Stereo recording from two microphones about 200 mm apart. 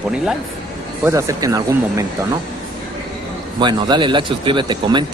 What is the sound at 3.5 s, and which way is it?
A man's voice, 20° right (ahead or behind).